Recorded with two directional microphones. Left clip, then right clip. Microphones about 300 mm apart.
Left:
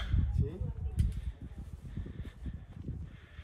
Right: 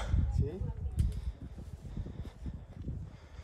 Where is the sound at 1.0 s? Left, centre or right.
Centre.